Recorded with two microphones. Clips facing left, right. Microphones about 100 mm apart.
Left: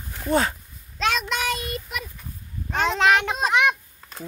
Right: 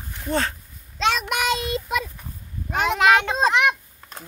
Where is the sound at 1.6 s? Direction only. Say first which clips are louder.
Right 6 dB; 90° right.